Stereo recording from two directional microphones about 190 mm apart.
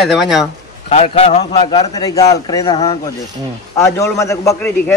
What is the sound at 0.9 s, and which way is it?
A man's voice, 35° left (ahead or behind).